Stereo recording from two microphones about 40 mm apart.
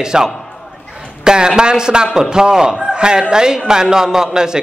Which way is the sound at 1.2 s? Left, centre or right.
Centre.